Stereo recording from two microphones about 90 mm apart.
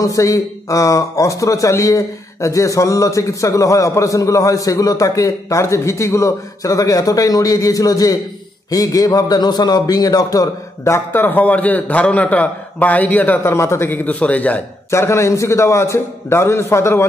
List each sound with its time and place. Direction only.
0.0 s a man's voice: 40° left (ahead or behind)
11.1 s a man's voice: 20° left (ahead or behind)
13.4 s a man's voice: 30° left (ahead or behind)
14.9 s speech: 35° left (ahead or behind)